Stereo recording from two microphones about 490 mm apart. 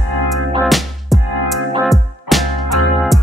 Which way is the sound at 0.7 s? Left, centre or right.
Centre.